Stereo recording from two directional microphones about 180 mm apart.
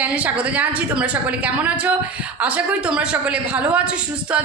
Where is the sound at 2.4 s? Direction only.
5° right (ahead or behind).